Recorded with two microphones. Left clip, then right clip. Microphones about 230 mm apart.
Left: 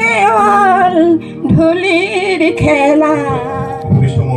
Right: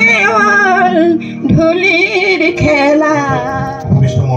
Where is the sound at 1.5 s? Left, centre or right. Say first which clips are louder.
Right 1 dB; centre.